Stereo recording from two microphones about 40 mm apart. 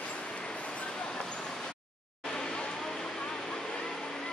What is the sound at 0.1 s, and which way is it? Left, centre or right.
Vehicle, left.